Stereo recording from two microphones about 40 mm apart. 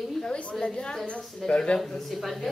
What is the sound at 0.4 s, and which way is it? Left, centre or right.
Speech, left.